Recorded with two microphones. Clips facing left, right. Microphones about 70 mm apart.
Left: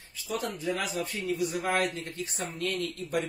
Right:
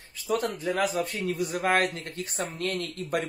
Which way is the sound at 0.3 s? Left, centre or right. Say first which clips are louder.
Right 4 dB; right.